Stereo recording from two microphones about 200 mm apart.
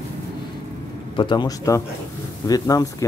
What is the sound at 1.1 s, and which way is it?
A man's voice, 25° left (ahead or behind).